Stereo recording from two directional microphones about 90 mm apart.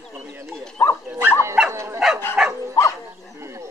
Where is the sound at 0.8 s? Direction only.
25° left (ahead or behind).